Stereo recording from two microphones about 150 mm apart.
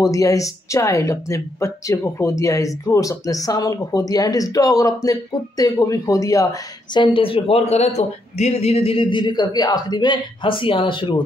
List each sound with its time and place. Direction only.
0.0 s a woman's voice: 20° left (ahead or behind)